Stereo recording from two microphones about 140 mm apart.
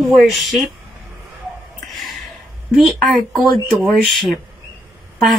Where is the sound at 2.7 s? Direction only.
Centre (ahead or behind).